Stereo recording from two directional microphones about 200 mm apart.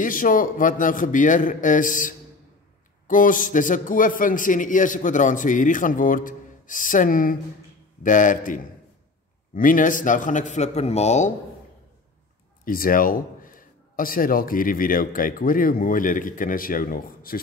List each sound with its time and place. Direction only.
0.0 s a man's voice: 40° left (ahead or behind)
12.6 s a man's voice: 45° left (ahead or behind)